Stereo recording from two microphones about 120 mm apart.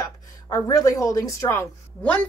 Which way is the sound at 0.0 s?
30° left (ahead or behind).